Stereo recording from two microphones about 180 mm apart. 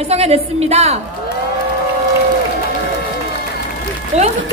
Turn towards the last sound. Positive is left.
turn(degrees=-40)  # may be behind; listen again after turning